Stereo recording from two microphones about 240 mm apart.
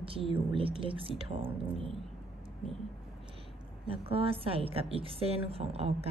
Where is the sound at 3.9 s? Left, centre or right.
Right.